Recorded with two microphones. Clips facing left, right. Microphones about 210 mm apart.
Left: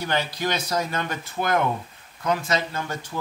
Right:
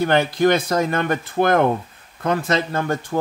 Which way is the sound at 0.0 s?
55° right (ahead or behind).